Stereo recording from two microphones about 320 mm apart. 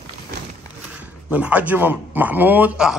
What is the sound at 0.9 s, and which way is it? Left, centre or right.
Speech, centre.